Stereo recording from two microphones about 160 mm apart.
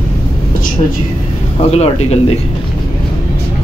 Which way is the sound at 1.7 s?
40° left (ahead or behind).